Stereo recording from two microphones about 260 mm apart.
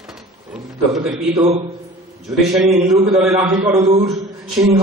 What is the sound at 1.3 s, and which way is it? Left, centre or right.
Speech, right.